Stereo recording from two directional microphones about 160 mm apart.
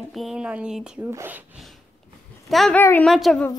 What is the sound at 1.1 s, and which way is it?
Speech, 15° right (ahead or behind).